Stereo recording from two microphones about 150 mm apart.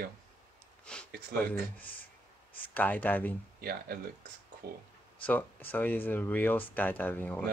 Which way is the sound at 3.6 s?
90° right.